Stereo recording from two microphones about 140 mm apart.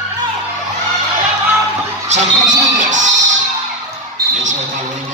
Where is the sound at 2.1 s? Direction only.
60° right (ahead or behind).